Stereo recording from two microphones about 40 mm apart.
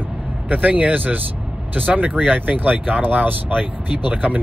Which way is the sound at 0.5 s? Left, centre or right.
Right.